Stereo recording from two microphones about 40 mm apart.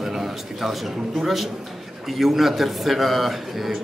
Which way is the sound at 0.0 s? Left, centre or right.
Centre.